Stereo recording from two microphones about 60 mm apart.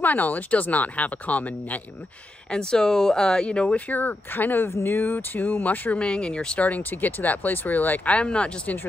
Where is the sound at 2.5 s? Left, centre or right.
Centre; by 4.6 s left.